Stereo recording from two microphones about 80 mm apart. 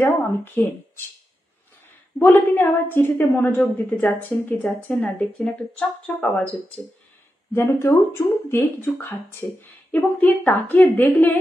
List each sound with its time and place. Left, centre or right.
0.6 s a woman's voice: left
2.1 s a woman's voice: left
7.5 s a woman's voice: left